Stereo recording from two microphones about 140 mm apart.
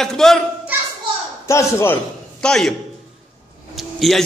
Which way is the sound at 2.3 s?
5° left (ahead or behind).